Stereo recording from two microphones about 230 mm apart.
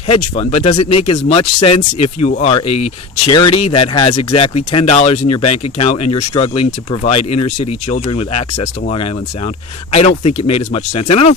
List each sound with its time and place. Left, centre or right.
0.1 s speech: left